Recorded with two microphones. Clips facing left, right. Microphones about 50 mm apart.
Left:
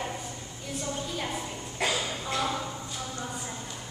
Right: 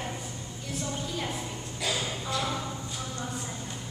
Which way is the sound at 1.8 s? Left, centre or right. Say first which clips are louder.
Left 3 dB; left.